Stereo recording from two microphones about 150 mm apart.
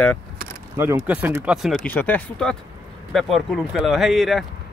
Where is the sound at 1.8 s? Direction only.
10° left (ahead or behind).